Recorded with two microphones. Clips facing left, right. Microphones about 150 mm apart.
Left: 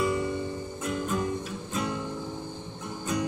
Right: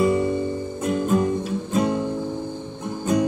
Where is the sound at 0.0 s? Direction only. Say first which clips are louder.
Right 8 dB; 30° right (ahead or behind).